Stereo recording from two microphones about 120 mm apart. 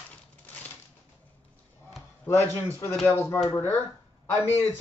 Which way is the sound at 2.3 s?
20° left (ahead or behind).